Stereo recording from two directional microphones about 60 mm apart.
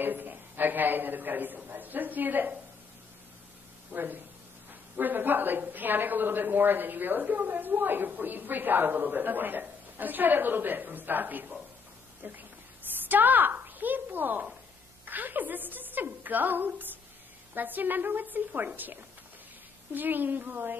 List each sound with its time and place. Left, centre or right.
0.0 s a woman's voice: right
3.9 s a woman's voice: right
19.9 s a woman's voice: right